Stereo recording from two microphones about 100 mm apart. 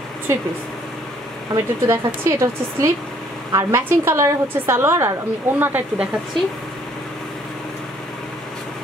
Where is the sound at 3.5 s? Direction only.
30° right (ahead or behind).